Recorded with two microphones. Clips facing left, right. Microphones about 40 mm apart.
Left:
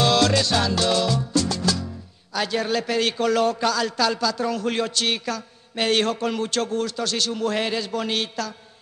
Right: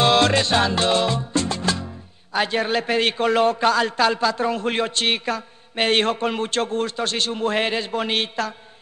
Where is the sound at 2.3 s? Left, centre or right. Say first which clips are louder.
Right 2 dB; right.